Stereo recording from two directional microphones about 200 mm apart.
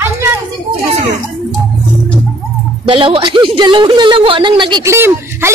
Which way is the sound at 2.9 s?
25° right (ahead or behind).